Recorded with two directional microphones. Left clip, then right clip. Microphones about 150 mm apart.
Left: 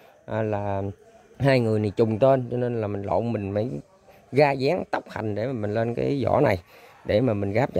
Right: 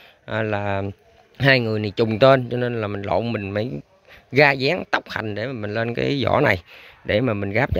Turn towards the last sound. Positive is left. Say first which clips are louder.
# right 2 dB
turn(degrees=0)  # may be behind; listen again after turning